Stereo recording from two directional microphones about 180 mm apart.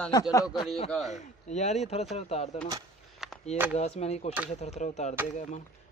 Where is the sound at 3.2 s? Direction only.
Centre (ahead or behind).